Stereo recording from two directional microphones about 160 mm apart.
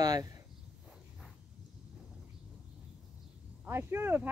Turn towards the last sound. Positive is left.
turn(degrees=-15)  # may be behind; listen again after turning